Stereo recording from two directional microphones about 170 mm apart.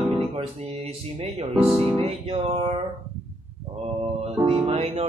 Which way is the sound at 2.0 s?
35° right (ahead or behind).